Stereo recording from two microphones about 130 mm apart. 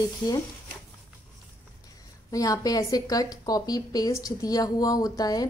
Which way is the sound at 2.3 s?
25° left (ahead or behind).